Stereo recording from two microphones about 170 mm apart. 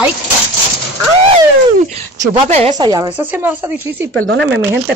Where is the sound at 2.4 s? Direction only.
40° right (ahead or behind).